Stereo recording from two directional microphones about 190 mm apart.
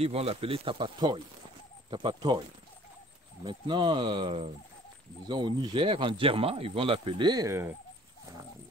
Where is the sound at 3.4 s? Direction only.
25° right (ahead or behind).